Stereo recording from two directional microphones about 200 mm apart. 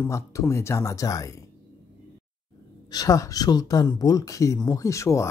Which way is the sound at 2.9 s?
15° left (ahead or behind).